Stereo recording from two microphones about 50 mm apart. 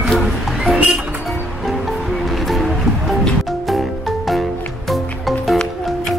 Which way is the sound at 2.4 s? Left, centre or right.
Centre.